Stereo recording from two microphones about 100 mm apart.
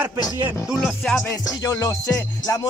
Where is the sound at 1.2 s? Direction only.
35° left (ahead or behind).